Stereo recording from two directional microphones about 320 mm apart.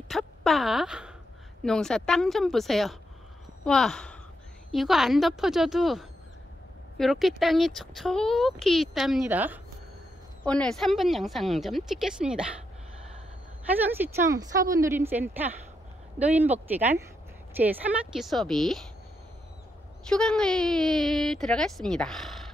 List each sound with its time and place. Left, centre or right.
0.1 s speech: centre
13.9 s a woman's voice: centre
16.6 s speech: centre
20.1 s speech: centre